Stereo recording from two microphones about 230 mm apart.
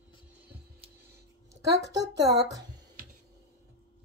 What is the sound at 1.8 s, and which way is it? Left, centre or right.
Speech, centre.